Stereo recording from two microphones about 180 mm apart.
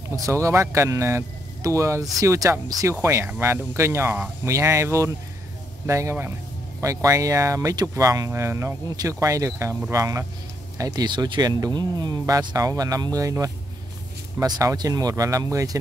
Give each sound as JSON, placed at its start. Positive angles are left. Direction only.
{"t": 0.1, "sound": "speech", "side_deg": -15}